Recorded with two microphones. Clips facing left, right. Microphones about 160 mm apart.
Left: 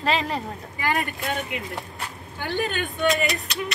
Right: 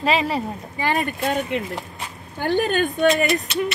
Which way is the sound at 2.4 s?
45° right (ahead or behind).